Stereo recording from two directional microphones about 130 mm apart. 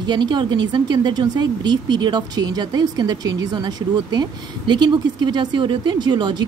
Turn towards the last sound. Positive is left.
turn(degrees=-35)  # may be behind; listen again after turning